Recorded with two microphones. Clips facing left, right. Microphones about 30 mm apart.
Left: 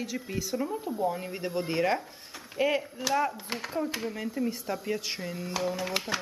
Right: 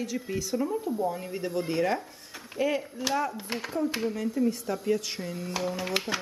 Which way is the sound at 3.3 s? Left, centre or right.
Centre.